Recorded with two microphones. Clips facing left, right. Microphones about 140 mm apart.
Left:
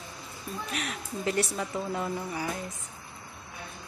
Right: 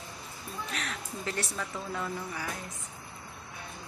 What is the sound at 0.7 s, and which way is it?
Speech, 15° left (ahead or behind).